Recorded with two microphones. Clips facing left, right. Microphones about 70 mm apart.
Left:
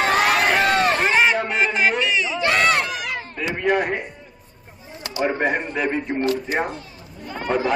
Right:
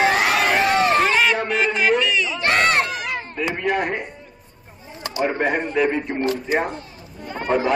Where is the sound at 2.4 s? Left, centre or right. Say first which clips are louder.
Right 1 dB; right.